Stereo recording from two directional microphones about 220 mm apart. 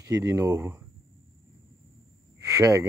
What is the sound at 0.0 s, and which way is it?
Speech, 15° right (ahead or behind).